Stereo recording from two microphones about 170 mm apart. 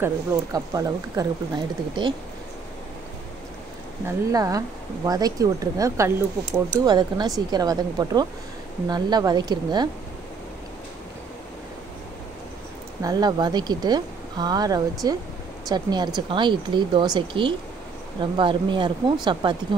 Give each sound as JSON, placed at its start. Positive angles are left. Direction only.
{"t": 0.0, "sound": "speech", "side_deg": -20}
{"t": 4.0, "sound": "speech", "side_deg": -20}
{"t": 13.0, "sound": "speech", "side_deg": -25}